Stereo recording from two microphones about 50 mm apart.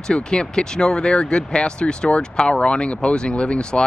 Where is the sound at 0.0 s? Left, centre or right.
Centre.